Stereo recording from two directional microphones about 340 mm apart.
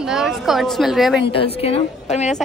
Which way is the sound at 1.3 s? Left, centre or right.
Centre.